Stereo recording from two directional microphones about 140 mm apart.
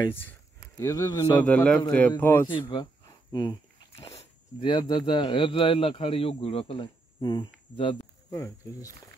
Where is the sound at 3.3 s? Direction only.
30° left (ahead or behind).